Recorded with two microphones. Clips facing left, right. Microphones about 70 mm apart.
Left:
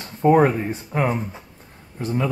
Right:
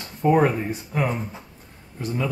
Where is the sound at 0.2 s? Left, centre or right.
Left.